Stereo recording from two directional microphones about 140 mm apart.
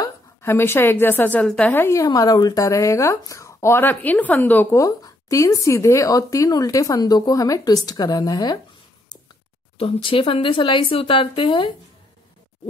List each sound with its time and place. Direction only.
0.0 s a woman's voice: 15° left (ahead or behind)
4.7 s speech: 25° left (ahead or behind)
9.8 s speech: 40° left (ahead or behind)